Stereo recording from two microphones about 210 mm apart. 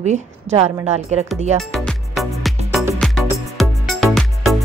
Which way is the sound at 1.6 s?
Centre (ahead or behind).